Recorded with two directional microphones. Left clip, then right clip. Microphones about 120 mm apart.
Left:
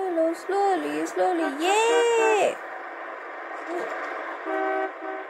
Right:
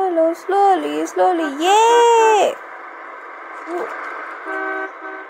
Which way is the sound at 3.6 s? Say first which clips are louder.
Right 6 dB; 35° left (ahead or behind).